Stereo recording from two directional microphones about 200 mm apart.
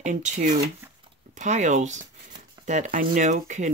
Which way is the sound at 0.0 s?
35° right (ahead or behind).